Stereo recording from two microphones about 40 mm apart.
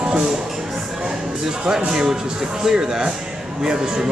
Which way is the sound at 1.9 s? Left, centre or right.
Centre.